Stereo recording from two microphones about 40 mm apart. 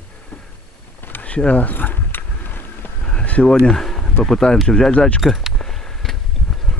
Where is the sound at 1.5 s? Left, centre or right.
Left.